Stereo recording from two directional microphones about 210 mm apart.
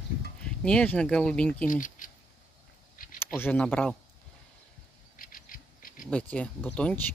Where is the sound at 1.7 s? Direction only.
40° left (ahead or behind).